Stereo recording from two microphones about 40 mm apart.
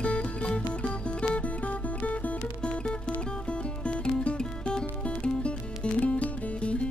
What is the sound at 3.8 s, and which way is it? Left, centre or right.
Music, left.